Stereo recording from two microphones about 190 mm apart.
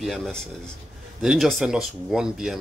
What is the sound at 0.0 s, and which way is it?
Speech, centre (ahead or behind).